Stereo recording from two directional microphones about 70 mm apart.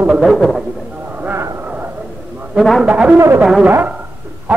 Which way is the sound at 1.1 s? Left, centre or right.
Right.